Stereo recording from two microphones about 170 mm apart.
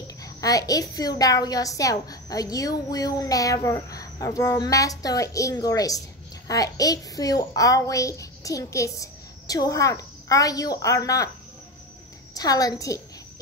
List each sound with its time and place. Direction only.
0.2 s a child's voice: 20° left (ahead or behind)
12.4 s a child's voice: 20° left (ahead or behind)